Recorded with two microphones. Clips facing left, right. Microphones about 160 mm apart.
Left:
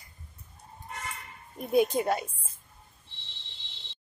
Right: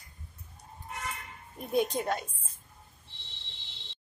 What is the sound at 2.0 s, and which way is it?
Speech, 5° left (ahead or behind).